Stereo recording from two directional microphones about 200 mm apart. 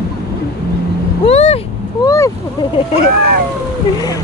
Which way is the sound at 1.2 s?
30° left (ahead or behind).